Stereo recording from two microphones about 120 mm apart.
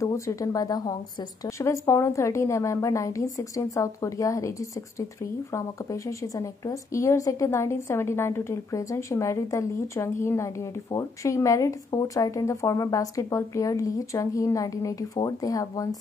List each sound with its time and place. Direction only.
0.0 s a woman's voice: 25° left (ahead or behind)